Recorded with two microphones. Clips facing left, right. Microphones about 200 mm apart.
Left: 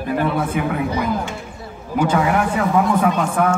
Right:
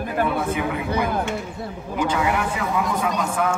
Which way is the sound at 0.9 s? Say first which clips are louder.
Left 1 dB; 55° right (ahead or behind).